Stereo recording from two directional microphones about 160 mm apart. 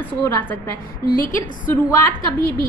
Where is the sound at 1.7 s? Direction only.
15° left (ahead or behind).